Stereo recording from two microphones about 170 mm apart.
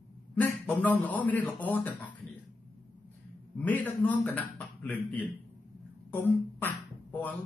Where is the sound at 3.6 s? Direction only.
10° left (ahead or behind).